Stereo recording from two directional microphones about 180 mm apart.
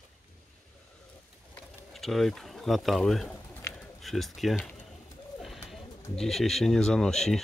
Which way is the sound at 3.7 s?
Centre (ahead or behind).